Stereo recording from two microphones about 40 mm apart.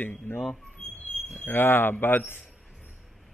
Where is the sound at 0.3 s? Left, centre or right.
Left.